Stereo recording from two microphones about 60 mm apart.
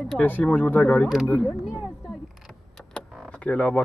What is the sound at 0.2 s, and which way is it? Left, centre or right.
Speech, left.